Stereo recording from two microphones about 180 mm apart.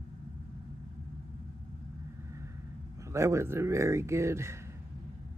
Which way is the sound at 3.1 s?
15° right (ahead or behind).